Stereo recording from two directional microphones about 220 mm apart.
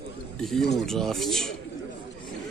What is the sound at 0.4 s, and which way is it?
A man's voice, centre (ahead or behind).